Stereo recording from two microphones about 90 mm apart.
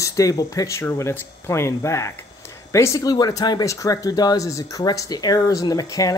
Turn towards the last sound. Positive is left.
turn(degrees=40)  # may be behind; listen again after turning